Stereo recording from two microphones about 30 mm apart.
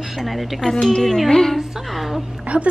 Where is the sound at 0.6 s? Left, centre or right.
Centre.